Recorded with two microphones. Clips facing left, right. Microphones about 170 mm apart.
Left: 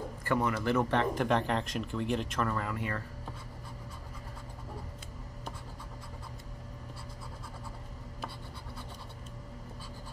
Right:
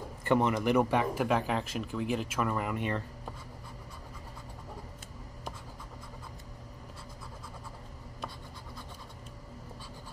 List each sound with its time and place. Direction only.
0.2 s speech: 20° right (ahead or behind); by 2.5 s 5° right (ahead or behind)
2.5 s speech: 20° right (ahead or behind)